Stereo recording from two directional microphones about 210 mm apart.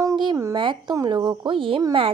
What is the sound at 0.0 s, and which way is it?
Speech, 20° right (ahead or behind).